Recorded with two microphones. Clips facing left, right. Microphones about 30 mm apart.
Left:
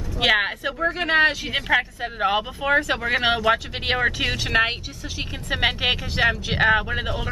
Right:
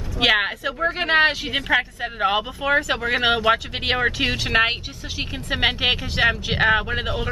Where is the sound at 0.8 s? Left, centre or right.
Centre.